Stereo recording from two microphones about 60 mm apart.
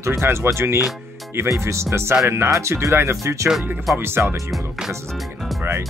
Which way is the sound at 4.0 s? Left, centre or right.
Right.